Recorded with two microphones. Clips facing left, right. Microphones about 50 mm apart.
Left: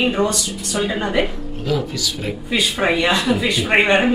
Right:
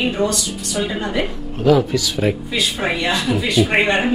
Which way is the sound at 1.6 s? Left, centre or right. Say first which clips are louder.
Right 7 dB; right.